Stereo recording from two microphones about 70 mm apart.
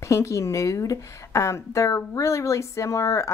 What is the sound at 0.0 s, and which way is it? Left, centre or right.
A woman's voice, left.